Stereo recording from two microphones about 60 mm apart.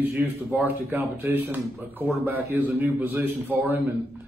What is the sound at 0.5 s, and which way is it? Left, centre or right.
A man's voice, right.